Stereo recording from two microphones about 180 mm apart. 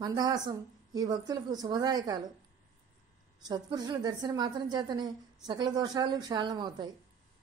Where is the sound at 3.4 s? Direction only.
20° right (ahead or behind).